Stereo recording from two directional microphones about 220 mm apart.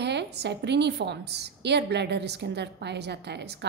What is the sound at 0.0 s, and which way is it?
A woman's voice, 50° right (ahead or behind).